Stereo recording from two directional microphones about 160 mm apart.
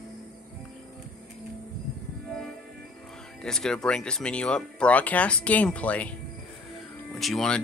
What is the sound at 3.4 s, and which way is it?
Speech, 5° left (ahead or behind).